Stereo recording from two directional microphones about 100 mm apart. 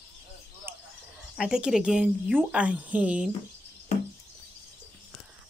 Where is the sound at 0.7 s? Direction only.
25° right (ahead or behind).